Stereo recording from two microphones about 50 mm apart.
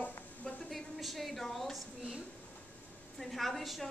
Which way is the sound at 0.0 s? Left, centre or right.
Left.